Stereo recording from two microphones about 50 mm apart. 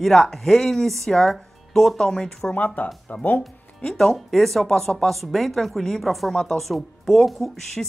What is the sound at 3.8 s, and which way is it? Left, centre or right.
Speech, centre.